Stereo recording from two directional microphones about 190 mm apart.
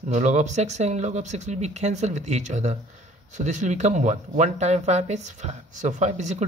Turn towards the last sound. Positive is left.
turn(degrees=-35)  # may be behind; listen again after turning